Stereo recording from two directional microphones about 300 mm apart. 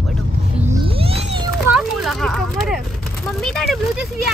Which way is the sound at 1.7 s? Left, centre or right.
Centre.